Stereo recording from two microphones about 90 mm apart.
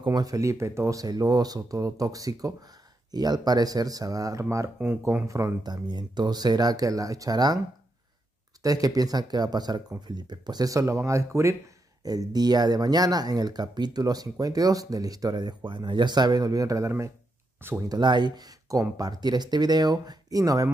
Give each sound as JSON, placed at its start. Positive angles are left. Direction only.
{"t": 0.0, "sound": "speech", "side_deg": -50}
{"t": 5.6, "sound": "speech", "side_deg": -50}
{"t": 8.6, "sound": "speech", "side_deg": -45}
{"t": 12.0, "sound": "speech", "side_deg": -45}
{"t": 17.6, "sound": "speech", "side_deg": -25}
{"t": 17.8, "sound": "speech", "side_deg": -50}